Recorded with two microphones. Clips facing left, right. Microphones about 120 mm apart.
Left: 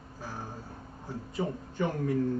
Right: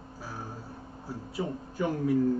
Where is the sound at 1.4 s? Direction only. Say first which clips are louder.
Even; 5° right (ahead or behind).